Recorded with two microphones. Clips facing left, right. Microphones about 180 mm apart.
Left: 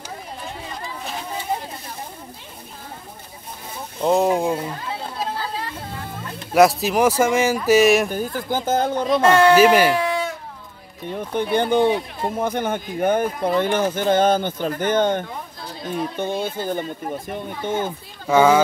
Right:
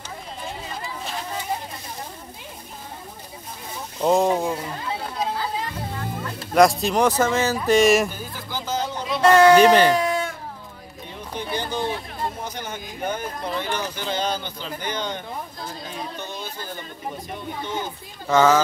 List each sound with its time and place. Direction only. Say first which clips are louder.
4.0 s speech: left 1 dB; centre (ahead or behind)
6.5 s speech: left 2 dB; 5° left (ahead or behind)
8.1 s speech: left 9 dB; 50° left (ahead or behind)
9.6 s speech: even; 10° left (ahead or behind)
9.9 s baby cry: left 1 dB; 45° right (ahead or behind)
11.1 s speech: left 8 dB; 55° left (ahead or behind)
18.2 s speech: left 2 dB; 10° left (ahead or behind)